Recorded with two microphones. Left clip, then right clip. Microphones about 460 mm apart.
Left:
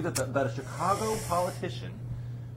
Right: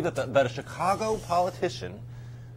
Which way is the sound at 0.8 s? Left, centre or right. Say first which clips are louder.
Right 2 dB; right.